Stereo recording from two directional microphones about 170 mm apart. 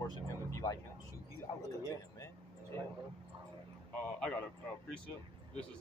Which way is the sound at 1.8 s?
15° left (ahead or behind).